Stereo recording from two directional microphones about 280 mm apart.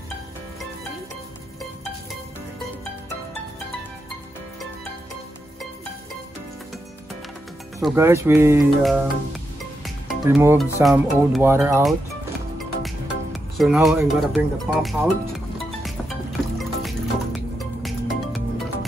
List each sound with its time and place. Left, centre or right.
7.8 s speech: centre
10.2 s speech: centre
12.5 s music: centre
16.5 s music: centre